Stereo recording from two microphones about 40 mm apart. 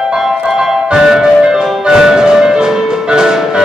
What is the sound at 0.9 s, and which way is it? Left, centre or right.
Music, centre.